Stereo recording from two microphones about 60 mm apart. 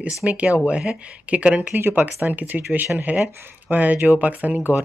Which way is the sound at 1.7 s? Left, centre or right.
Right.